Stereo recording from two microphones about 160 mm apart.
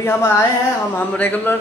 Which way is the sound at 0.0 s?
15° left (ahead or behind).